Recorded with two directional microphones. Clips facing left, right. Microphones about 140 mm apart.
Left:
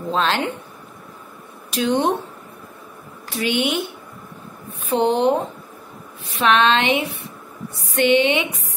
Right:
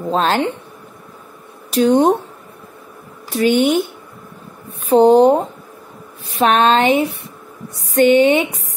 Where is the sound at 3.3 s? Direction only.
45° right (ahead or behind).